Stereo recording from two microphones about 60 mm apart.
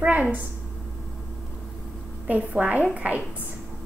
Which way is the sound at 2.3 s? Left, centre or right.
Right.